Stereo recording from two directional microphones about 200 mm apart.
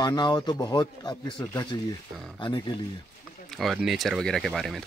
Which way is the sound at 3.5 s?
Centre (ahead or behind).